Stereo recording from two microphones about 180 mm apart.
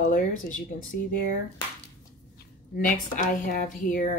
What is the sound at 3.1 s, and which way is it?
Speech, 45° left (ahead or behind).